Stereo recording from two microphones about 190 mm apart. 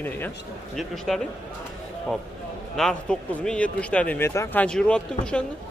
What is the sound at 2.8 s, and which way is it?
Speech, 5° left (ahead or behind).